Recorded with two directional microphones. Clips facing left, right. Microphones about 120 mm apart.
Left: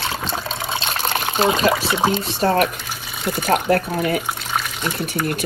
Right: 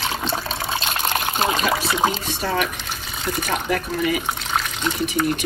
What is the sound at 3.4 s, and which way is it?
Speech, 55° left (ahead or behind).